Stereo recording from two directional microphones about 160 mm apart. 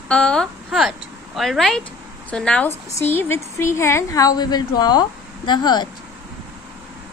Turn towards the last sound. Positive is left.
turn(degrees=25)  # may be behind; listen again after turning